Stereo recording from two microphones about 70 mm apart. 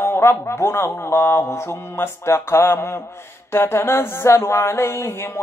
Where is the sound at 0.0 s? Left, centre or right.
Left.